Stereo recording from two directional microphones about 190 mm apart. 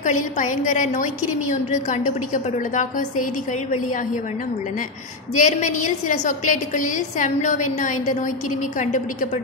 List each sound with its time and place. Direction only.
0.0 s a woman's voice: 40° left (ahead or behind)
5.3 s a woman's voice: 40° left (ahead or behind)